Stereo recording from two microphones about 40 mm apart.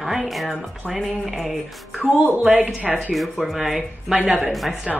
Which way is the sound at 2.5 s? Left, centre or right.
Right.